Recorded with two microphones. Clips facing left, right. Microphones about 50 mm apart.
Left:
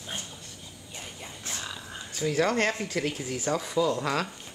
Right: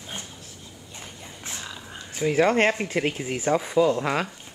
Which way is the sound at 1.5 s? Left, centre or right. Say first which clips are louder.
Even; centre.